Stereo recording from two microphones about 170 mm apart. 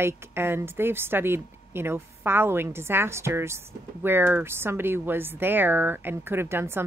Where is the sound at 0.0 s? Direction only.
15° right (ahead or behind).